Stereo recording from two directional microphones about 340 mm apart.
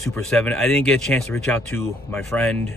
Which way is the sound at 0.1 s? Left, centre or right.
Centre.